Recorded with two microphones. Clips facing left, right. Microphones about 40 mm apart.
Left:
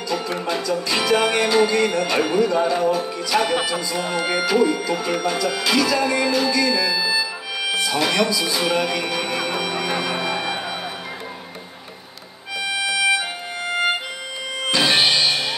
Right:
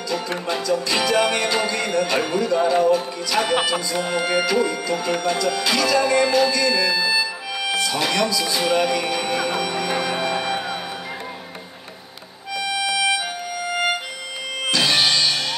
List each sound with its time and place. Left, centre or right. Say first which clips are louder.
0.5 s music: right 2 dB; centre
12.5 s music: even; centre
14.7 s music: left 1 dB; centre